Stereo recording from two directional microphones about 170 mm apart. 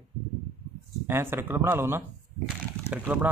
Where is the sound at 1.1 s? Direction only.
15° right (ahead or behind).